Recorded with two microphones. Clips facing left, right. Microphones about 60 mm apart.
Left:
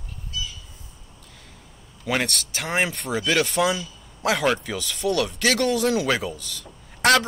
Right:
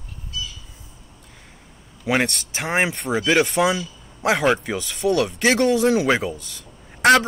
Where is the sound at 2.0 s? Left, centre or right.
Right.